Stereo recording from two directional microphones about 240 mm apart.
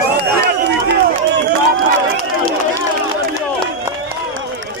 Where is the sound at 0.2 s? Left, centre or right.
Right.